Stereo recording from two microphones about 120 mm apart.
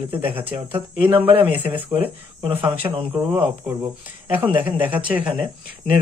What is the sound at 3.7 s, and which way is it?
Speech, 10° right (ahead or behind).